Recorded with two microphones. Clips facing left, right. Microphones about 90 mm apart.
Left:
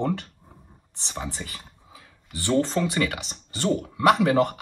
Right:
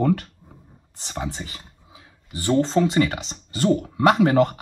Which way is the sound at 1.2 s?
25° right (ahead or behind).